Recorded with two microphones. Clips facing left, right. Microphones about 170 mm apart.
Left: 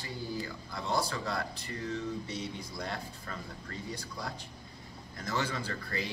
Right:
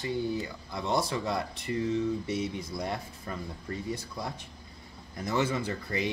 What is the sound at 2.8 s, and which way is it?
Speech, 20° right (ahead or behind).